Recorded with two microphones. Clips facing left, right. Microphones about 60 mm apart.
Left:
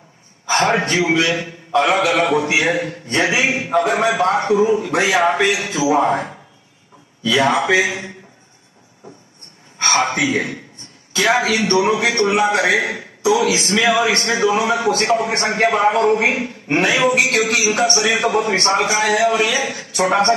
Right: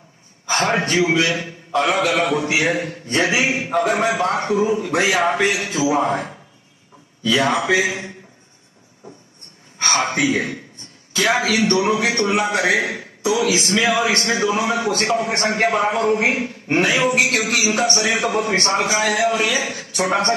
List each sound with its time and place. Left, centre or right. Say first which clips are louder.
0.5 s a man's voice: left 3 dB; left
7.5 s a man's voice: left 2 dB; left
9.8 s a sound: left 3 dB; left
10.2 s a man's voice: left 1 dB; left